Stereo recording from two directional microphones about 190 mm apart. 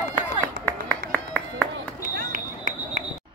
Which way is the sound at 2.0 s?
45° right (ahead or behind).